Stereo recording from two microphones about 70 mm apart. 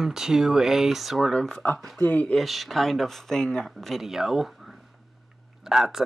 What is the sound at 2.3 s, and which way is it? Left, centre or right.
Speech, centre.